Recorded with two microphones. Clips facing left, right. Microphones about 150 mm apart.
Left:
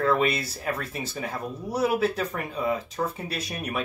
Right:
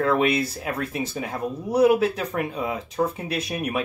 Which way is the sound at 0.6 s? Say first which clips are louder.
Right 3 dB; 5° right (ahead or behind).